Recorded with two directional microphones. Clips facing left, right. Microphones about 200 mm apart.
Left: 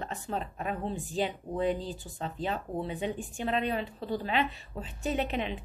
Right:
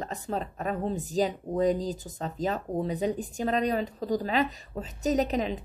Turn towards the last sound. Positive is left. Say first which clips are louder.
# right 5 dB
turn(degrees=-40)  # may be behind; listen again after turning